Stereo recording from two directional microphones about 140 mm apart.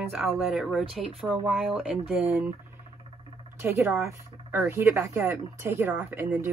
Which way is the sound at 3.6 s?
15° right (ahead or behind).